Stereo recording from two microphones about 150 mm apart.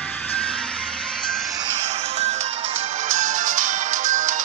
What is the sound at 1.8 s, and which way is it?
Music, 45° right (ahead or behind).